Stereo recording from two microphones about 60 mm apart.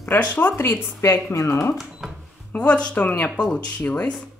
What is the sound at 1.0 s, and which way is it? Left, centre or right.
Speech, left.